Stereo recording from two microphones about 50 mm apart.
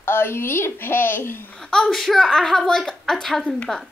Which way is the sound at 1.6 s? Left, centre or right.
Centre.